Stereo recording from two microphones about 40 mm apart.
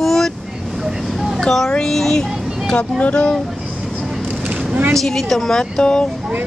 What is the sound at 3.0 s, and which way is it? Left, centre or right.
Speech, left.